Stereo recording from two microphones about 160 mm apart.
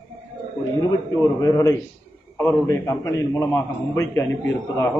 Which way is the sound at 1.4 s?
20° left (ahead or behind).